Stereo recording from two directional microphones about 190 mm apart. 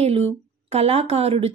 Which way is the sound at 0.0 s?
35° right (ahead or behind).